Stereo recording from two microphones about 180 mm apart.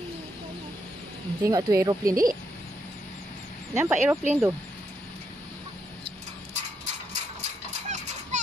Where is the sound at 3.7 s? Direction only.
10° right (ahead or behind).